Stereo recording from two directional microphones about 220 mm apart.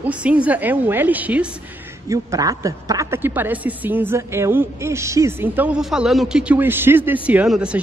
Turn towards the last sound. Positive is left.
turn(degrees=-5)  # may be behind; listen again after turning